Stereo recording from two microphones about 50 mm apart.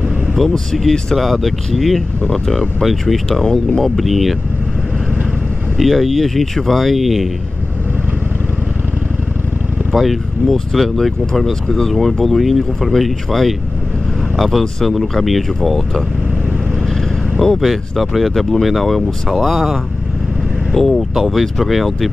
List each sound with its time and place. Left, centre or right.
0.5 s speech: centre
1.1 s speech: centre
3.3 s speech: centre
3.9 s speech: centre
5.8 s speech: centre
9.9 s speech: centre
17.6 s speech: centre